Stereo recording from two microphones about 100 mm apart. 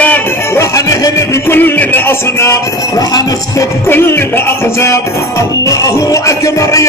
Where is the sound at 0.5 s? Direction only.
30° left (ahead or behind).